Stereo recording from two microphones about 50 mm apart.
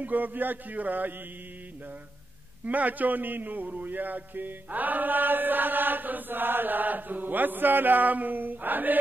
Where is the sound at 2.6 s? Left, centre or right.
Right.